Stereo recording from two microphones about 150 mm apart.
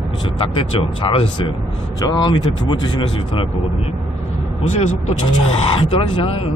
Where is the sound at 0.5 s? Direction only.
35° left (ahead or behind).